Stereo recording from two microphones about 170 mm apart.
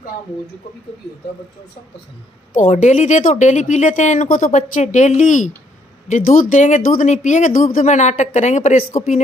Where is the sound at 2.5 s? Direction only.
45° left (ahead or behind).